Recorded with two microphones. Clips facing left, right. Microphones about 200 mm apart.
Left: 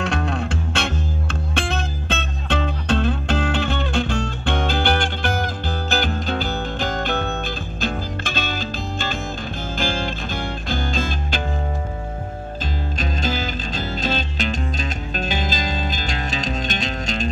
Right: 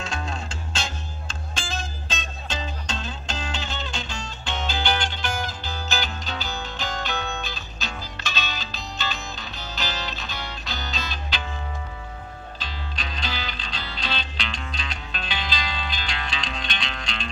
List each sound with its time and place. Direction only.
0.0 s music: 65° left (ahead or behind)
12.9 s music: 45° left (ahead or behind)